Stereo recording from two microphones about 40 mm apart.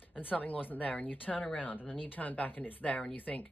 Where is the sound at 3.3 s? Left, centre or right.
Centre.